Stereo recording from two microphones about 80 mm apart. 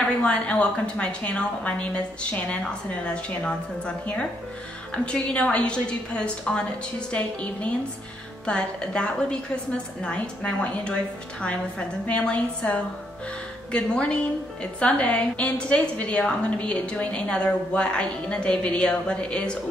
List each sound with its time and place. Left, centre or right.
0.2 s a woman's voice: centre
12.1 s a woman's voice: centre